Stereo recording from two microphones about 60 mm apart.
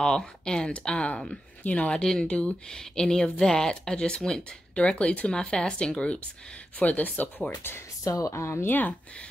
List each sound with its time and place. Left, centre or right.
0.0 s speech: centre; by 7.7 s left
8.0 s speech: left
8.3 s speech: left